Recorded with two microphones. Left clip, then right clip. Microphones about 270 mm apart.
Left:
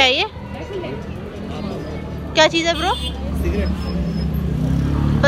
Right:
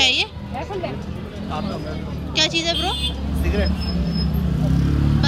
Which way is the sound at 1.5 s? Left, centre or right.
Centre.